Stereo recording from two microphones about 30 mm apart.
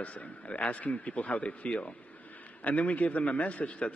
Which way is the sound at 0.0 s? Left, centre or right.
Left.